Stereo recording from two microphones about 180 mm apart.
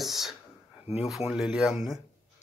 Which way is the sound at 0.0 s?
Centre (ahead or behind).